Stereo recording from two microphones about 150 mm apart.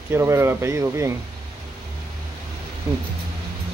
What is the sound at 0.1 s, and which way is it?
Speech, 20° right (ahead or behind).